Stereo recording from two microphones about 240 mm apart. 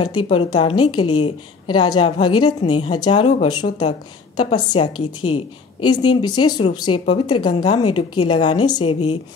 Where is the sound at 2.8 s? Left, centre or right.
Centre.